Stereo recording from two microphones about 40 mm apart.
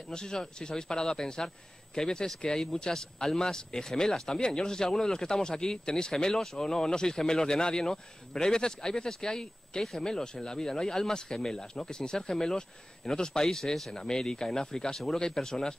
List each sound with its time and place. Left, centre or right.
0.1 s speech: centre